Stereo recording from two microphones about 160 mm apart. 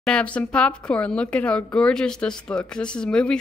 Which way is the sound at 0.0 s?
5° left (ahead or behind).